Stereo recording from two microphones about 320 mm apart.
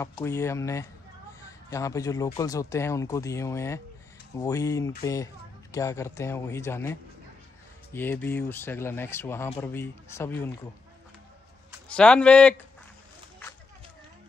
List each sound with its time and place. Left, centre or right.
0.0 s speech: centre
11.9 s speech: centre